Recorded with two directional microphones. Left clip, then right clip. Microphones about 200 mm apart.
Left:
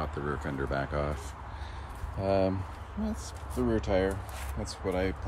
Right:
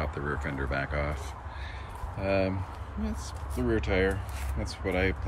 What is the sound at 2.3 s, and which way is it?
Speech, 20° left (ahead or behind).